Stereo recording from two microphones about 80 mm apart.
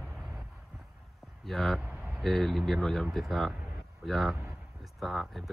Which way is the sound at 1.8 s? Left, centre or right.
Right.